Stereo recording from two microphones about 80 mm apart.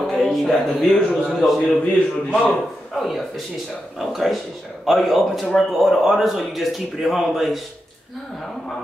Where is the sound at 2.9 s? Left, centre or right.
Centre.